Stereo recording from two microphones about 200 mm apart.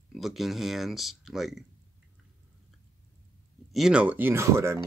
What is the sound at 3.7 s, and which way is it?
Speech, 5° right (ahead or behind).